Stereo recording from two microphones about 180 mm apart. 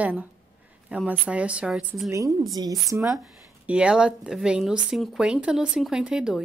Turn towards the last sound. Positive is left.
turn(degrees=-5)  # may be behind; listen again after turning